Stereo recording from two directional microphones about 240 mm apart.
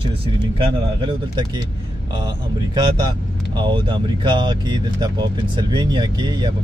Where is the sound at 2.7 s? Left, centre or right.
Centre.